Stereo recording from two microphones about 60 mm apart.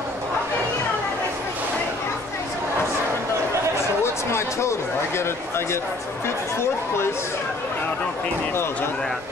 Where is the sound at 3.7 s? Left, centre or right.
Left.